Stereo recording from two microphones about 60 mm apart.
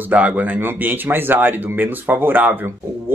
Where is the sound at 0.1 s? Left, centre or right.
Right.